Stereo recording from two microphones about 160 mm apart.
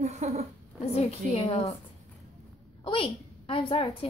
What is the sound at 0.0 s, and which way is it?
Speech, 45° right (ahead or behind).